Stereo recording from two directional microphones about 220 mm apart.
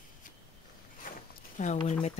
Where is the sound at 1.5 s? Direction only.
35° left (ahead or behind).